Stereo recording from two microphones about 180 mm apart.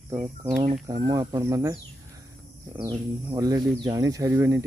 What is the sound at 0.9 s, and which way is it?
Speech, 20° right (ahead or behind).